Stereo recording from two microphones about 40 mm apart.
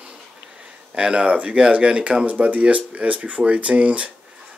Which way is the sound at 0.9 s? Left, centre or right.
Right.